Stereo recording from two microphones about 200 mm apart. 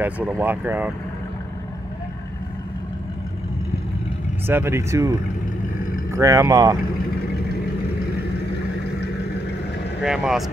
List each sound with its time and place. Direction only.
0.0 s speech: 5° right (ahead or behind)
4.5 s speech: 10° right (ahead or behind)
6.1 s speech: 15° right (ahead or behind)
10.0 s speech: centre (ahead or behind)